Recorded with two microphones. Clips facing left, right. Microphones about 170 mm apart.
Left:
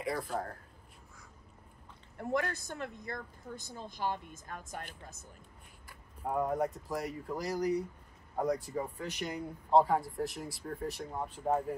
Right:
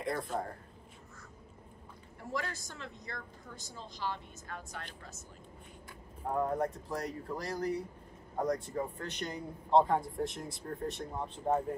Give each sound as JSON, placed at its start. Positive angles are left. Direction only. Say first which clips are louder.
{"t": 0.0, "sound": "speech", "louder": "even", "side_deg": 0}
{"t": 2.1, "sound": "a woman's voice", "louder": "left 5 dB", "side_deg": 60}
{"t": 5.9, "sound": "speech", "louder": "left 1 dB", "side_deg": 5}
{"t": 8.4, "sound": "speech", "louder": "even", "side_deg": 0}